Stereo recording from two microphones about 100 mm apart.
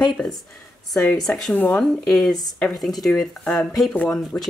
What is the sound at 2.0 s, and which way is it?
Speech, 5° left (ahead or behind).